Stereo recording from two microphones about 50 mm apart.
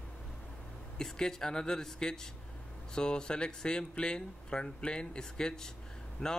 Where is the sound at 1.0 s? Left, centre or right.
Centre.